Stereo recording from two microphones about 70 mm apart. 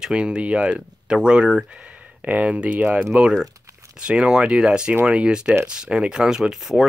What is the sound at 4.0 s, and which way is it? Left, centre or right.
Speech, centre.